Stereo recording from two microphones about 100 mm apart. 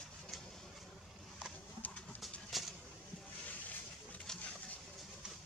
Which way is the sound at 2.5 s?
Centre (ahead or behind).